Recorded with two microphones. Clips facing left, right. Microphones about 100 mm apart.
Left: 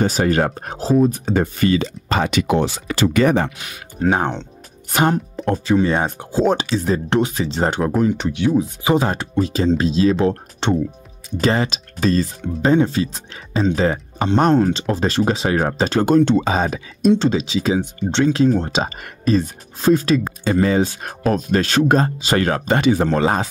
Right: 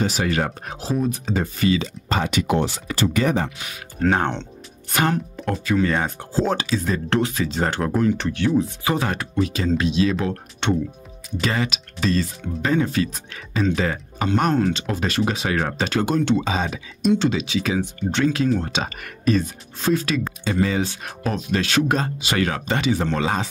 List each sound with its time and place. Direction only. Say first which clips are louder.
0.0 s speech: left 5 dB; 40° left (ahead or behind)
1.2 s speech: left 4 dB; 50° left (ahead or behind)
2.0 s speech: left 3 dB; 80° left; by 3.5 s 65° left (ahead or behind)
4.0 s speech: left 2 dB; 10° left (ahead or behind)
4.9 s speech: left 4 dB; 20° left (ahead or behind)
7.8 s speech: left 1 dB; 15° left (ahead or behind); by 17.1 s 45° left (ahead or behind)
17.1 s speech: left 3 dB; 35° left (ahead or behind)